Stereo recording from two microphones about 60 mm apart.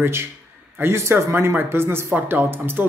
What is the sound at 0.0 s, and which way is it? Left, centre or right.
A man's voice, right.